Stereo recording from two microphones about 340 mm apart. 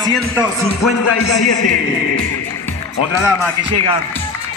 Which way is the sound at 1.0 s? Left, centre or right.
Left.